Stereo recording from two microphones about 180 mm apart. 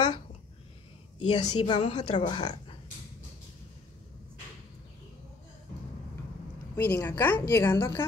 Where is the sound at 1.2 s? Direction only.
30° left (ahead or behind).